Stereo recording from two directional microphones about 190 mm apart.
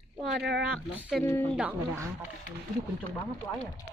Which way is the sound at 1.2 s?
10° left (ahead or behind).